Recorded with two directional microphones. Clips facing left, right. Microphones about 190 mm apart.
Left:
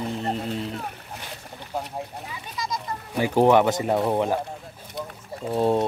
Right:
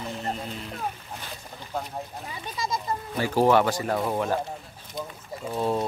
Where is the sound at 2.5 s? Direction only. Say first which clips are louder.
Right 1 dB; 30° right (ahead or behind).